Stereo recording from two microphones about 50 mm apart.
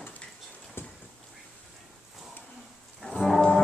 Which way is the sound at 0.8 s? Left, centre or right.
Left.